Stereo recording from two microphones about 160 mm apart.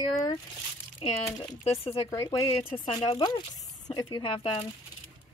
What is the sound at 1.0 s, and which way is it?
Speech, 35° left (ahead or behind).